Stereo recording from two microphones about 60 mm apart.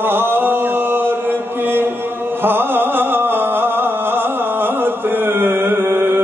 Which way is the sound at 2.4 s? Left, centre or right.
Right.